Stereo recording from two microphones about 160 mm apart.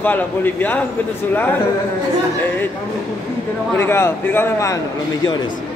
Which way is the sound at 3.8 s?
15° left (ahead or behind).